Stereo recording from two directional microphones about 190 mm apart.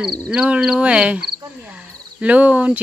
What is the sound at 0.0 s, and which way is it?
Speech, centre (ahead or behind).